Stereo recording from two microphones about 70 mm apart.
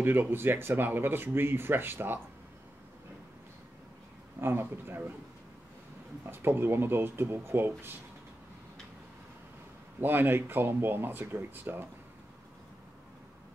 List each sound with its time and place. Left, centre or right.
0.0 s speech: right
4.4 s speech: right
6.2 s speech: right
9.9 s speech: right